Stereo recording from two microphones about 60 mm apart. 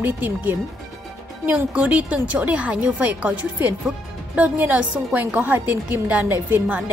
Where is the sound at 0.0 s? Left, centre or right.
Right.